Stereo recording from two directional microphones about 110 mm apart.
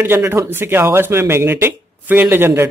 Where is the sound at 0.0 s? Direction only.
20° right (ahead or behind).